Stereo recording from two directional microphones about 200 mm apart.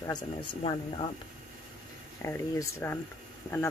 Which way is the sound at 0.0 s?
20° left (ahead or behind).